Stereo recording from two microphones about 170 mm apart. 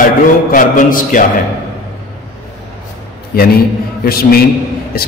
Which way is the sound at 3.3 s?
65° left (ahead or behind).